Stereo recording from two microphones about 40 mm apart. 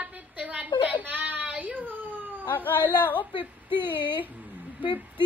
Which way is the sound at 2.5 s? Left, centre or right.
Left.